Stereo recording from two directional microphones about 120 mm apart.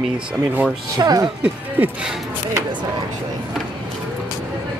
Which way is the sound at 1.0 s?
30° right (ahead or behind).